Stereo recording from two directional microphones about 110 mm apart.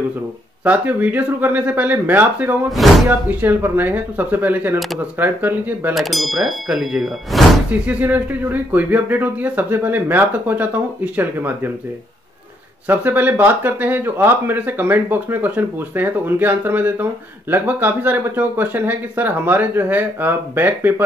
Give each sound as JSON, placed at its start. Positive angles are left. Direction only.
{"t": 0.7, "sound": "speech", "side_deg": -15}
{"t": 5.9, "sound": "speech", "side_deg": 0}
{"t": 7.8, "sound": "speech", "side_deg": -15}
{"t": 12.8, "sound": "speech", "side_deg": -15}